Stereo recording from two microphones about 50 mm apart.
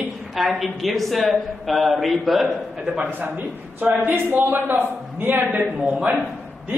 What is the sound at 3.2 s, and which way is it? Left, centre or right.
A man's voice, right.